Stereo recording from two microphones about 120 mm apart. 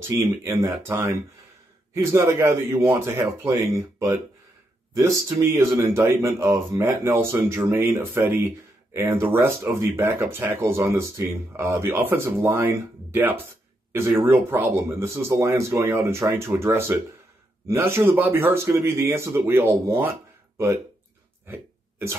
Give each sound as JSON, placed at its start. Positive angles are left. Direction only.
{"t": 0.1, "sound": "speech", "side_deg": -25}
{"t": 21.5, "sound": "hiccup", "side_deg": -20}